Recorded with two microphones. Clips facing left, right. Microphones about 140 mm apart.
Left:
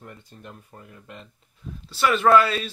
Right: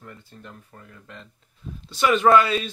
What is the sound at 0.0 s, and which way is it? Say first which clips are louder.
Speech: even; 20° left (ahead or behind).